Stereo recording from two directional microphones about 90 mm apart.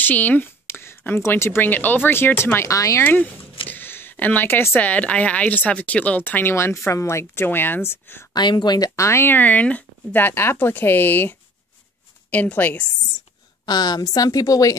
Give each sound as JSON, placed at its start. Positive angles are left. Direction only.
{"t": 0.0, "sound": "speech", "side_deg": 20}
{"t": 3.0, "sound": "speech", "side_deg": 20}
{"t": 8.3, "sound": "a woman's voice", "side_deg": 55}
{"t": 13.7, "sound": "a woman's voice", "side_deg": 50}